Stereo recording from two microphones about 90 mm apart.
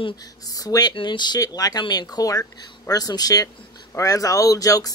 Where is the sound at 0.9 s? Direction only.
55° left (ahead or behind).